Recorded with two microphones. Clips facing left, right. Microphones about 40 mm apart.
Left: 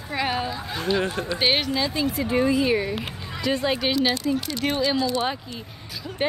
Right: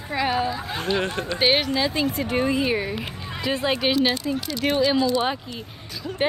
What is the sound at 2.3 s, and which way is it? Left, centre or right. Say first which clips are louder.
Speech: left 2 dB; right.